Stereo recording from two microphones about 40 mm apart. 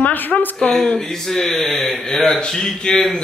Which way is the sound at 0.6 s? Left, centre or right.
Left.